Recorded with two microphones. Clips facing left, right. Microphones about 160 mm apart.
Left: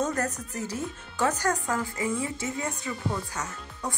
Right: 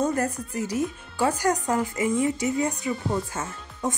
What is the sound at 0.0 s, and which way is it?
Speech, 10° right (ahead or behind).